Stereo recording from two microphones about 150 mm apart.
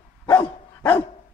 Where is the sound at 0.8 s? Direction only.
20° left (ahead or behind).